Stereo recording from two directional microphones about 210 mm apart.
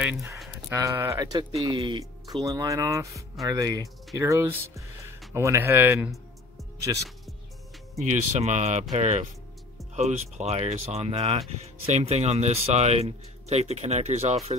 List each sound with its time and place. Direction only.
0.0 s speech: 10° right (ahead or behind)
8.0 s speech: 35° right (ahead or behind)